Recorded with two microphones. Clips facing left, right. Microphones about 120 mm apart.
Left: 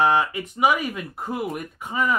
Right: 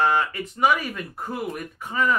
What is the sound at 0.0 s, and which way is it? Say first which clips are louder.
Speech: left 2 dB; 15° left (ahead or behind).